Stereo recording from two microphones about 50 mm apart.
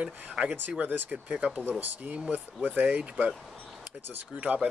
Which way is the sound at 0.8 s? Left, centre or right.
Right.